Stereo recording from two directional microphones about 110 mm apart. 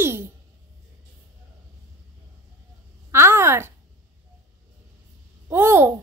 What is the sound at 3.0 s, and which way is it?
Speech, 25° right (ahead or behind).